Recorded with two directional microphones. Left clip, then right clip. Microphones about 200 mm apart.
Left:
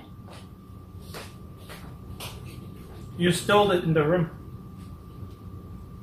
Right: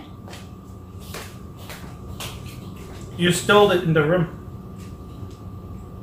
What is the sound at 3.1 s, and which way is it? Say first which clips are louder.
Speech: right 5 dB; 10° right (ahead or behind).